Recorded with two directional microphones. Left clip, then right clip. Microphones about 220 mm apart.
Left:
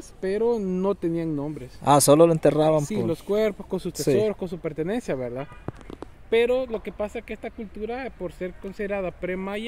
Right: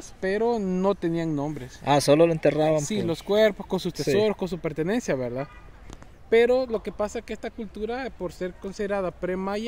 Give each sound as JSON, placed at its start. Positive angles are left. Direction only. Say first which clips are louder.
{"t": 0.2, "sound": "speech", "louder": "left 1 dB", "side_deg": -20}
{"t": 1.9, "sound": "speech", "louder": "left 3 dB", "side_deg": 25}
{"t": 3.1, "sound": "speech", "louder": "right 5 dB", "side_deg": -35}
{"t": 6.3, "sound": "speech", "louder": "right 2 dB", "side_deg": -35}
{"t": 6.8, "sound": "speech", "louder": "right 1 dB", "side_deg": -15}